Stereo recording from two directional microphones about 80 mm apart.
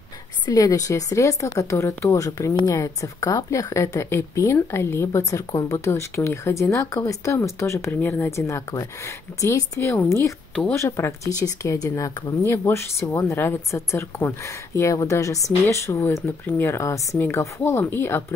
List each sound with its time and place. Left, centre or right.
0.5 s a woman's voice: left